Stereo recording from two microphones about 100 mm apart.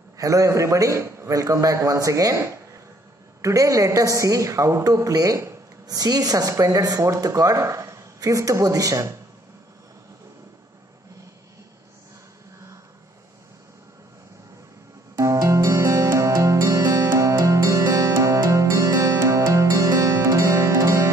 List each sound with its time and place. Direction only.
0.2 s a man's voice: 35° right (ahead or behind)
3.4 s a man's voice: 35° right (ahead or behind)
15.1 s music: 30° right (ahead or behind)